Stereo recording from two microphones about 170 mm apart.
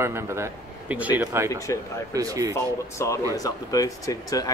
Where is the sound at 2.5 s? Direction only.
15° left (ahead or behind).